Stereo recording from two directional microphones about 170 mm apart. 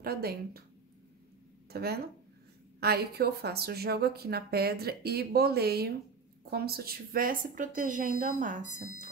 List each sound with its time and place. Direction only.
0.0 s speech: 65° right (ahead or behind)
1.7 s speech: 70° right (ahead or behind); by 8.6 s 50° right (ahead or behind)